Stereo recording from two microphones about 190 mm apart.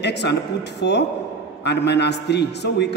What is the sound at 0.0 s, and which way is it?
A man's voice, 60° left (ahead or behind).